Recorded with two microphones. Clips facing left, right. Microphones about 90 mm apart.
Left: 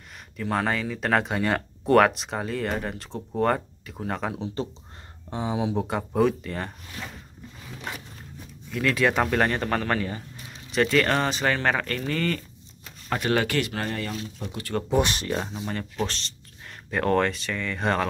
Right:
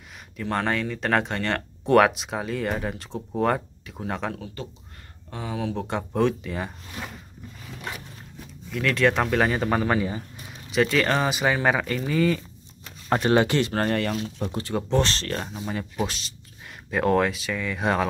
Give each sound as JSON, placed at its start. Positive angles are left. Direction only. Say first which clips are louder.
{"t": 0.4, "sound": "speech", "louder": "even", "side_deg": 0}
{"t": 4.6, "sound": "speech", "louder": "left 6 dB", "side_deg": 30}
{"t": 5.3, "sound": "speech", "louder": "left 3 dB", "side_deg": 20}
{"t": 5.9, "sound": "speech", "louder": "right 1 dB", "side_deg": 0}
{"t": 8.6, "sound": "speech", "louder": "right 1 dB", "side_deg": 0}
{"t": 13.1, "sound": "speech", "louder": "right 4 dB", "side_deg": -25}
{"t": 14.9, "sound": "speech", "louder": "left 1 dB", "side_deg": 15}
{"t": 15.4, "sound": "speech", "louder": "right 1 dB", "side_deg": 0}